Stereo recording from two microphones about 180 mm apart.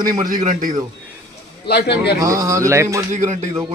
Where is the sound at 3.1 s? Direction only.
45° right (ahead or behind).